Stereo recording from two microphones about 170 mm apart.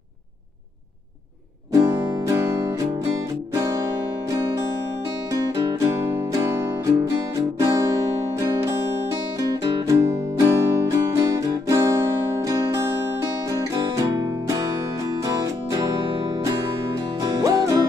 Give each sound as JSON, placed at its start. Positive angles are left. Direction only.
{"t": 1.7, "sound": "music", "side_deg": -20}
{"t": 5.3, "sound": "music", "side_deg": -20}
{"t": 7.5, "sound": "guitar", "side_deg": -20}
{"t": 8.4, "sound": "music", "side_deg": -20}
{"t": 14.5, "sound": "music", "side_deg": -20}
{"t": 17.2, "sound": "music", "side_deg": -20}